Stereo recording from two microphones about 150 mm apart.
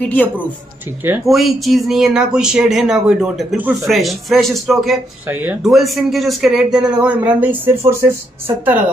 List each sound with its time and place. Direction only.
0.0 s a man's voice: 10° left (ahead or behind)
1.2 s speech: centre (ahead or behind)
5.3 s speech: 10° right (ahead or behind)